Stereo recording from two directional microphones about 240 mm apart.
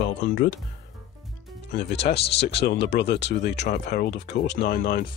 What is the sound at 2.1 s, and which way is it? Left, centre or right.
Speech, left.